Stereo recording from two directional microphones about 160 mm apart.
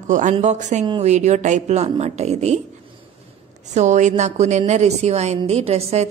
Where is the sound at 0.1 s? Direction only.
50° right (ahead or behind).